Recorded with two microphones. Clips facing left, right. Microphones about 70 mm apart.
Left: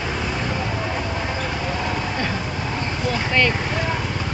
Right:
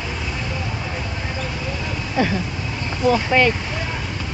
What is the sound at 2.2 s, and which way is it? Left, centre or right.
Vehicle, centre.